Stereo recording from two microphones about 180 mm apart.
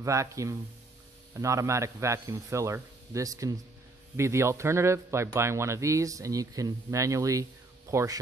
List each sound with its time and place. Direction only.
0.0 s speech: 15° right (ahead or behind)